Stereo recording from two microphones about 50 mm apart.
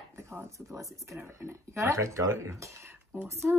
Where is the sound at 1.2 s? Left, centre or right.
Right.